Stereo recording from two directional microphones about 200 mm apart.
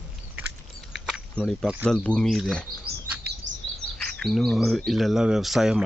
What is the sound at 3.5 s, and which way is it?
Bird, 65° right (ahead or behind).